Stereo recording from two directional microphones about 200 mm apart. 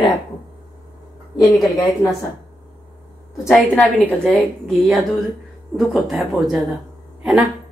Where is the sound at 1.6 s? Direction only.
Centre (ahead or behind).